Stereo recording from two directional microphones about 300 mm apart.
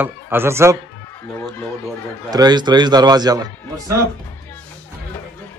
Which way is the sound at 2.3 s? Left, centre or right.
Centre.